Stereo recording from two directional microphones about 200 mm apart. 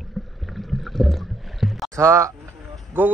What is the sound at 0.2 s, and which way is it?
Boat, centre (ahead or behind).